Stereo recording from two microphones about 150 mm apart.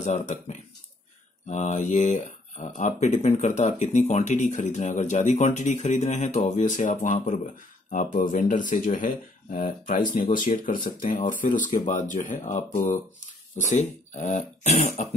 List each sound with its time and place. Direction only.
0.0 s speech: 50° left (ahead or behind)